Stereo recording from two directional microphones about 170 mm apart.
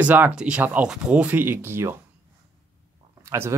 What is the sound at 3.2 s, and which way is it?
Speech, 15° right (ahead or behind).